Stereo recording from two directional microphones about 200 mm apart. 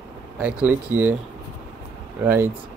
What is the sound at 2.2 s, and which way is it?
Speech, 10° right (ahead or behind).